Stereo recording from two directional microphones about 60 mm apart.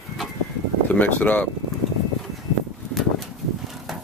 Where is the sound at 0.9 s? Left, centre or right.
Left.